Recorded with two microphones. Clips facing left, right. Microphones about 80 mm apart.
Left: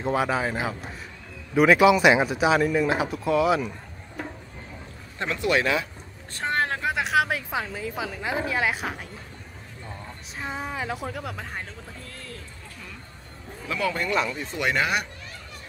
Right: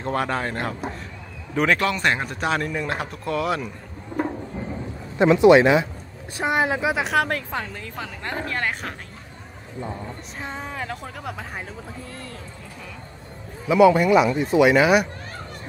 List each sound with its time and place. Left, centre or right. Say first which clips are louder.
0.0 s a woman's voice: even; centre
5.2 s a woman's voice: right 11 dB; right; by 8.9 s centre
10.4 s a woman's voice: left 1 dB; centre
13.7 s speech: right 12 dB; centre